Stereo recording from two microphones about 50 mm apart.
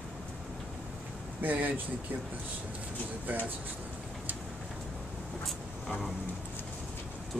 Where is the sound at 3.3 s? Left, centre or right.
Right.